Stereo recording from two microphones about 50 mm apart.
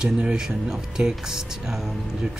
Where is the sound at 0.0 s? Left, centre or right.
Centre.